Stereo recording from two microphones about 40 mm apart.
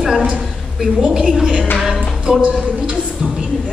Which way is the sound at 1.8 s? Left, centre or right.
Centre.